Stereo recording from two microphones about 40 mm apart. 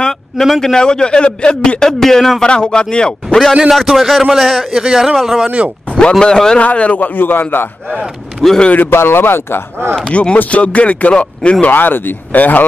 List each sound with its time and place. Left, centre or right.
0.4 s a man's voice: centre
0.7 s a man's voice: left
2.4 s a man's voice: left
3.8 s a man's voice: centre
5.9 s a man's voice: left
6.6 s speech: left
7.0 s a man's voice: left
8.4 s a man's voice: centre
8.9 s speech: left
10.1 s speech: left
11.7 s speech: left